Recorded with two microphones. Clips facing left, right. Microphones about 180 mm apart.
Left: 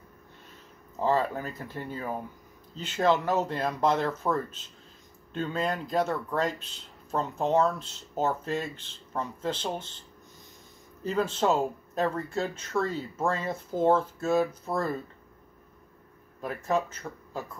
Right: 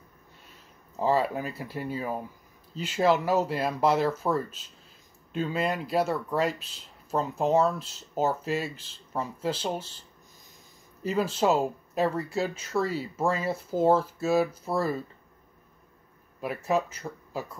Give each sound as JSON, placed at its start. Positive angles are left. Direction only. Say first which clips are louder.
{"t": 0.9, "sound": "speech", "louder": "right 1 dB", "side_deg": -10}
{"t": 11.1, "sound": "speech", "louder": "right 1 dB", "side_deg": -10}
{"t": 16.3, "sound": "speech", "louder": "right 1 dB", "side_deg": -10}